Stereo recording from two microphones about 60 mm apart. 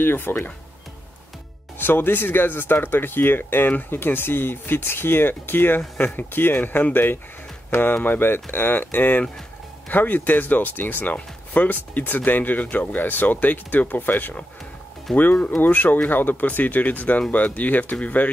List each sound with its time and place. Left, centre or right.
0.0 s speech: left
1.8 s speech: left
15.1 s speech: centre
15.5 s speech: left